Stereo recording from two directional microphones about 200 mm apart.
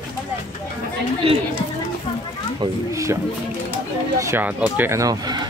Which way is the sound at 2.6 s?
15° right (ahead or behind).